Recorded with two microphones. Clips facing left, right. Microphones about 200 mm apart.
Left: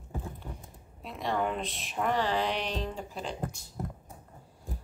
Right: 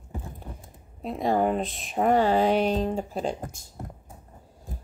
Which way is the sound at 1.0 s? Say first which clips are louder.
Right 7 dB; 40° right (ahead or behind).